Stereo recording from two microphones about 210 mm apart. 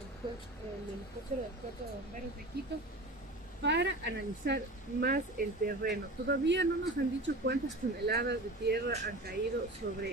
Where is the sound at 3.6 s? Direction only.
55° right (ahead or behind).